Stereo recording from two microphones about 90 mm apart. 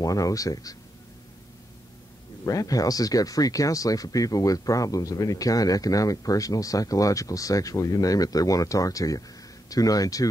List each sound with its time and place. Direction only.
0.0 s speech: 40° left (ahead or behind)
2.4 s speech: 40° left (ahead or behind)